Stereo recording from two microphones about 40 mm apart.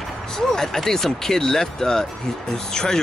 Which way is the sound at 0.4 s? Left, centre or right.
Centre.